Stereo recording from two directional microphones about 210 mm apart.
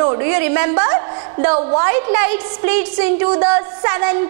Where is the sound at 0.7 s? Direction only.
25° right (ahead or behind).